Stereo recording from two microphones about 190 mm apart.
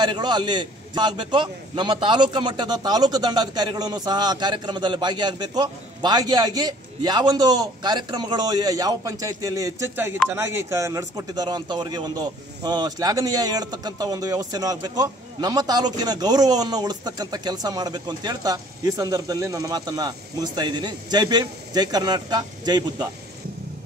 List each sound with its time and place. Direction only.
0.0 s a man's voice: 25° right (ahead or behind)